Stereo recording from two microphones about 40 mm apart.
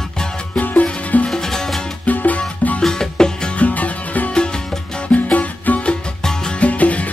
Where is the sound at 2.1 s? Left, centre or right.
Left.